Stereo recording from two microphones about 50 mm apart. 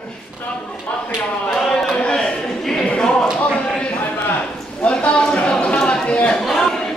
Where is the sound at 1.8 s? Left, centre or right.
Centre.